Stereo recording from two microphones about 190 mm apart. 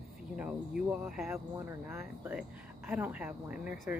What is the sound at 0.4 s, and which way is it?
Speech, 5° right (ahead or behind).